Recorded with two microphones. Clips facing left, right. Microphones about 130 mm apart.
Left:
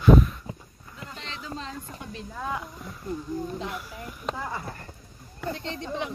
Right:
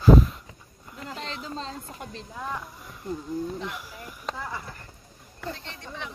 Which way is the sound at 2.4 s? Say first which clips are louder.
Left 2 dB; 10° left (ahead or behind).